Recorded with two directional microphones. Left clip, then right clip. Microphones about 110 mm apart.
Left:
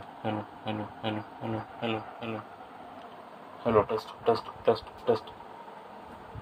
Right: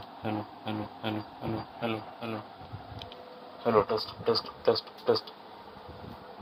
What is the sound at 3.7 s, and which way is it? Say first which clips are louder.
Speech: even; 35° right (ahead or behind).